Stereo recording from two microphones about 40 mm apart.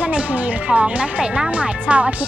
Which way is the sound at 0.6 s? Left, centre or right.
Right.